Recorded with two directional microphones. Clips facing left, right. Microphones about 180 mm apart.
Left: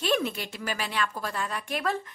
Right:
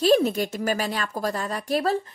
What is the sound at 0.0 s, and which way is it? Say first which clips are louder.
A woman's voice: right 8 dB; 40° right (ahead or behind).